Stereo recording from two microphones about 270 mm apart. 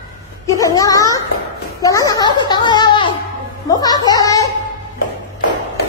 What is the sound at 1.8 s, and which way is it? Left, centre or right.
A child's voice, centre.